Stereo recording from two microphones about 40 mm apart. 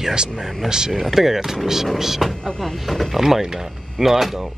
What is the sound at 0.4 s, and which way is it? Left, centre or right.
Speech, centre.